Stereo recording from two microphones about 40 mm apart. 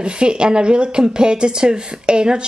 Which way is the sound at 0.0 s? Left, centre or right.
Right.